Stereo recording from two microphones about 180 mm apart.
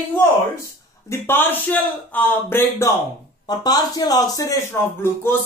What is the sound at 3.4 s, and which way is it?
Speech, 20° left (ahead or behind).